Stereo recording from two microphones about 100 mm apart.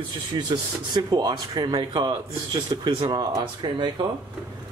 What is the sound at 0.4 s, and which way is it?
Speech, 45° right (ahead or behind).